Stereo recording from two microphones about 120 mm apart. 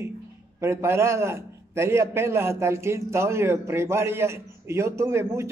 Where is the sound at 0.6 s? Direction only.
20° right (ahead or behind).